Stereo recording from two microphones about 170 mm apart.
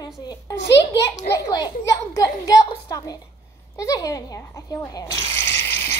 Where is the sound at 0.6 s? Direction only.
85° left.